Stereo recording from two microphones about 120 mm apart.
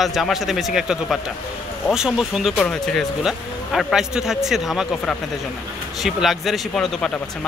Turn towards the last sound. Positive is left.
turn(degrees=5)  # may be behind; listen again after turning